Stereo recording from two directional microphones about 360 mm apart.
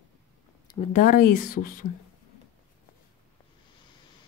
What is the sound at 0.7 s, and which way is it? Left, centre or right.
Speech, left.